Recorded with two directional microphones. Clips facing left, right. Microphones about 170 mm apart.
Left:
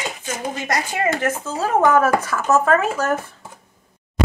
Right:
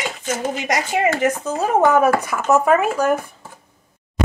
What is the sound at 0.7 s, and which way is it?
Speech, 15° right (ahead or behind).